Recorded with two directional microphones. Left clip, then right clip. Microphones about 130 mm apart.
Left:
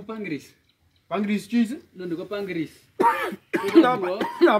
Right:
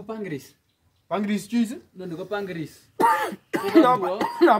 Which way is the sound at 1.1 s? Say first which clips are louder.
Even; 35° right (ahead or behind).